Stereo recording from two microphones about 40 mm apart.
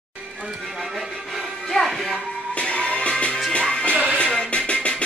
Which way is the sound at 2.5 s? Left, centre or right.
Left.